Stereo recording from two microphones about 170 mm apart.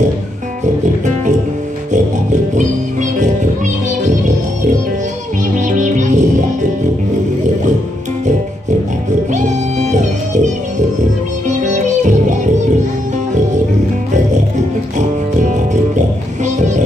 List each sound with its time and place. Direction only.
2.5 s music: 45° right (ahead or behind)
5.7 s music: 45° right (ahead or behind)
9.3 s music: 45° right (ahead or behind)
16.4 s music: 45° right (ahead or behind)